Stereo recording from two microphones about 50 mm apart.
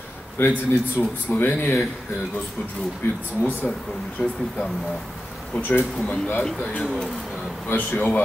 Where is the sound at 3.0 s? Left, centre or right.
Left.